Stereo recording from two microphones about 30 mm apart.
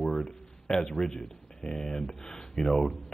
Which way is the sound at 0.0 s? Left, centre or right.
Centre.